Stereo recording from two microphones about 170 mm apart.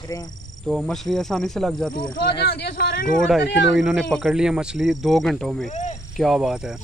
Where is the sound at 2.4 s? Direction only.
75° left (ahead or behind); by 3.1 s 60° left (ahead or behind).